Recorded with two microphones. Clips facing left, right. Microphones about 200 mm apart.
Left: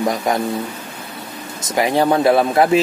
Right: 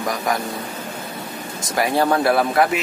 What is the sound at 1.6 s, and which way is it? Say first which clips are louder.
Speech: left 3 dB; 20° left (ahead or behind).